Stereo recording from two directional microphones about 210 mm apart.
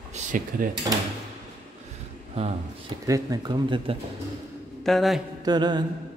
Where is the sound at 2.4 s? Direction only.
30° right (ahead or behind).